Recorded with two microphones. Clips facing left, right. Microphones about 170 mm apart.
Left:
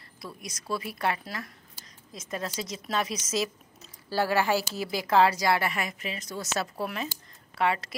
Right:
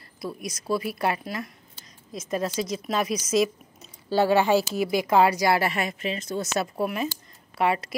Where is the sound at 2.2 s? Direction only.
20° right (ahead or behind).